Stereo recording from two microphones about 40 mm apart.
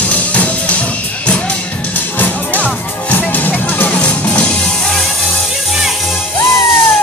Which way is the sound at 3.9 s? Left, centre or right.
Left.